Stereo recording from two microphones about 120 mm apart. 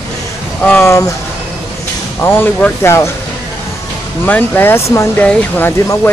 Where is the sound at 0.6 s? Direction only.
15° left (ahead or behind).